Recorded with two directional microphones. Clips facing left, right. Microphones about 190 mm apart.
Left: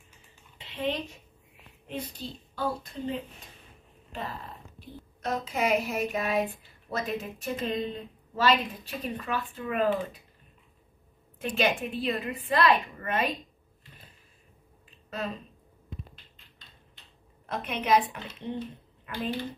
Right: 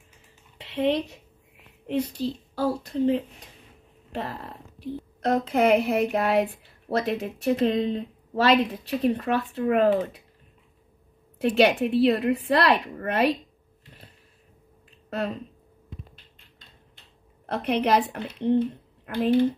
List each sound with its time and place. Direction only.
0.6 s a sound: 70° right (ahead or behind)
1.9 s a child's voice: 70° right (ahead or behind)
5.2 s speech: 60° right (ahead or behind)
11.4 s a woman's voice: 75° right (ahead or behind)
15.0 s speech: 65° right (ahead or behind)
17.5 s speech: 65° right (ahead or behind)